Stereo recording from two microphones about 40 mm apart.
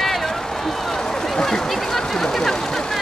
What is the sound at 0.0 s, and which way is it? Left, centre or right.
Run, centre.